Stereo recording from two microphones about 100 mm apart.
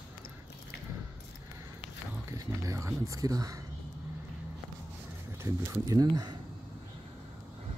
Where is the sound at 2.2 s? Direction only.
35° right (ahead or behind).